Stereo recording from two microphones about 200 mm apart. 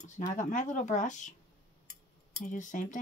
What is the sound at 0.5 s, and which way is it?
Speech, 40° left (ahead or behind).